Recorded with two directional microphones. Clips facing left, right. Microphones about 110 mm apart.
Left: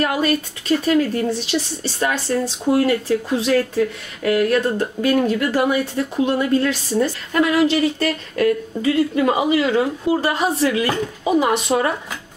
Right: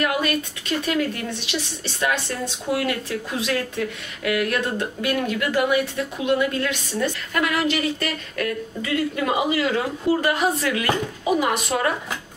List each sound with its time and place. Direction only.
0.0 s a woman's voice: 35° left (ahead or behind)